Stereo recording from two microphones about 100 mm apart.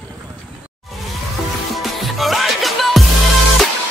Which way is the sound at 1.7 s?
Centre (ahead or behind).